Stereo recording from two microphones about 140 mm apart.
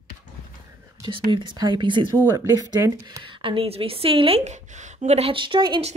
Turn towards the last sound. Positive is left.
turn(degrees=-35)  # may be behind; listen again after turning